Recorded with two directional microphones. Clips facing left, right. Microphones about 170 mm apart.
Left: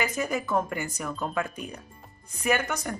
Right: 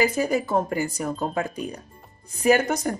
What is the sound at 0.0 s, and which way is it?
Speech, 35° right (ahead or behind).